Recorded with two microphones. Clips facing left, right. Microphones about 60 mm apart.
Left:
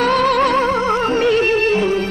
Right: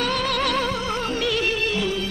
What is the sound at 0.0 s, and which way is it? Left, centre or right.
Music, left.